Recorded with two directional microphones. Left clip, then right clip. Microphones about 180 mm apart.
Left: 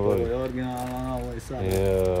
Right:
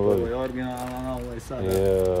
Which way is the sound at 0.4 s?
25° left (ahead or behind).